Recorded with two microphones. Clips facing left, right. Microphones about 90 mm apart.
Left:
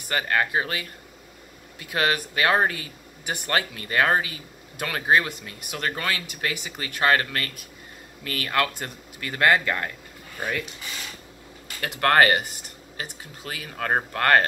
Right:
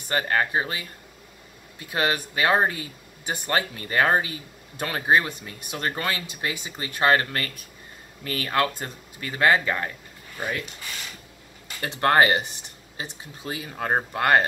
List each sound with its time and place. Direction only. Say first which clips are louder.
0.1 s speech: even; 30° right (ahead or behind)
11.8 s speech: even; 25° right (ahead or behind)